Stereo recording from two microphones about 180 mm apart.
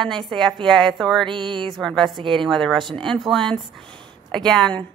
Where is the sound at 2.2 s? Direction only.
25° right (ahead or behind).